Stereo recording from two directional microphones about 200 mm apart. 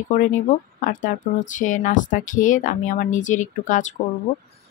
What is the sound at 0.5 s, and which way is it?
Speech, 40° left (ahead or behind).